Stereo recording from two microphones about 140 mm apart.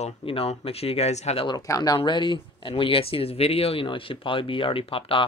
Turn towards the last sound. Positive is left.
turn(degrees=40)  # may be behind; listen again after turning